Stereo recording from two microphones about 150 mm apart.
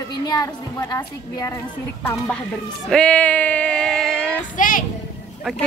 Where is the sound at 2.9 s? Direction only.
5° left (ahead or behind).